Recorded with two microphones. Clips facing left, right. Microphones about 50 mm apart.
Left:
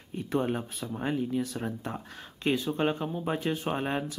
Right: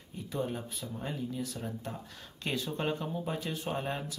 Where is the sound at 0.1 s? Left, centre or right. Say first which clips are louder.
Left 6 dB; left.